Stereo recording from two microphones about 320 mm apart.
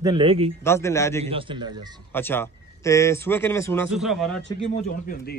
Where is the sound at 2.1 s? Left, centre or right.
Centre.